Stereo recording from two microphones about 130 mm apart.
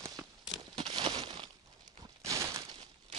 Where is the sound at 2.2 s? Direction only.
25° right (ahead or behind).